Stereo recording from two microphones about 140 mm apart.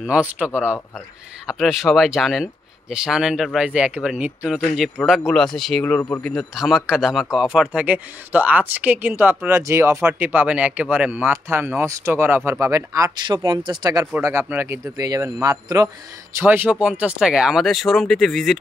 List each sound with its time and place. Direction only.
0.0 s speech: 10° right (ahead or behind)
1.5 s speech: centre (ahead or behind); by 6.2 s 15° left (ahead or behind)
6.2 s speech: centre (ahead or behind); by 14.0 s 30° right (ahead or behind)
14.1 s a man's voice: 20° right (ahead or behind)
16.3 s speech: 15° right (ahead or behind)